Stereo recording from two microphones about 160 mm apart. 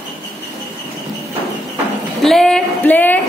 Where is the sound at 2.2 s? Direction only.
5° left (ahead or behind).